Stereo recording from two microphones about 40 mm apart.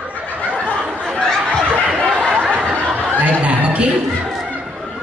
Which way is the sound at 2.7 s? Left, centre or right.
Right.